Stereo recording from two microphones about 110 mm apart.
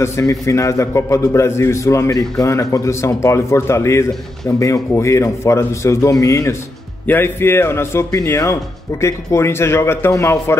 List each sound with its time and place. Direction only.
0.0 s a man's voice: 30° left (ahead or behind)